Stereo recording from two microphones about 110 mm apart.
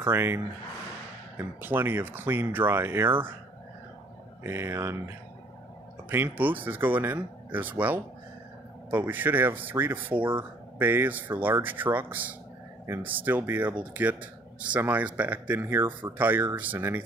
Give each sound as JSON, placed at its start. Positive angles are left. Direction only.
{"t": 0.0, "sound": "speech", "side_deg": -20}
{"t": 1.4, "sound": "speech", "side_deg": -20}
{"t": 4.4, "sound": "speech", "side_deg": -25}
{"t": 6.0, "sound": "speech", "side_deg": -20}